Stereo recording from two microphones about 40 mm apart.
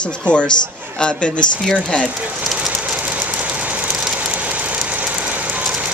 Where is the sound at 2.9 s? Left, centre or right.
Right.